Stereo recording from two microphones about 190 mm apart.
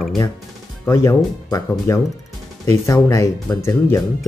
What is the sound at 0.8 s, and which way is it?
Speech, 15° left (ahead or behind).